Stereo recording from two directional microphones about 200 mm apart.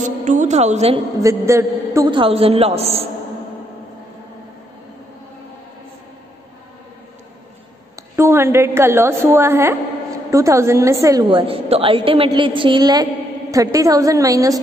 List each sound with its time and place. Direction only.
0.0 s a woman's voice: 40° right (ahead or behind)
1.2 s a man's voice: 15° right (ahead or behind); by 3.1 s 30° right (ahead or behind)
7.9 s a woman's voice: 10° right (ahead or behind)